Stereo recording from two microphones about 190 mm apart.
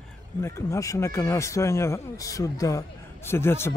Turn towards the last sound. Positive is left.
turn(degrees=15)  # may be behind; listen again after turning